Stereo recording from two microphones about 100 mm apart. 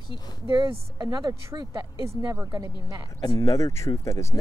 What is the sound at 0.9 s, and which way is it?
Speech, 35° right (ahead or behind).